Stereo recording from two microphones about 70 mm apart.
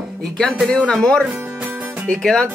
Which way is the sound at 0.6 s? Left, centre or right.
Centre.